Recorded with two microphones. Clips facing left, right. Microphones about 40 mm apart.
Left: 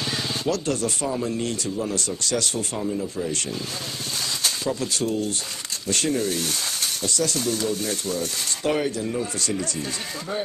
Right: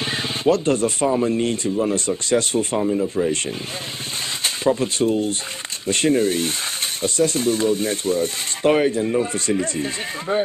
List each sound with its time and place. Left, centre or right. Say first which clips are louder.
0.0 s speech: right 5 dB; right